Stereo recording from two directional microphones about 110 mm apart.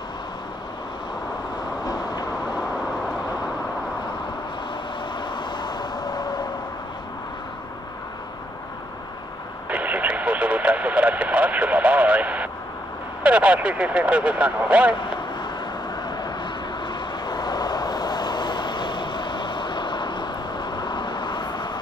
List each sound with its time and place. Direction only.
1.9 s vehicle: 40° left (ahead or behind)
5.2 s vehicle: 45° left (ahead or behind)
9.7 s vehicle: 15° right (ahead or behind)
13.2 s speech: 10° right (ahead or behind)
16.1 s vehicle: 40° left (ahead or behind)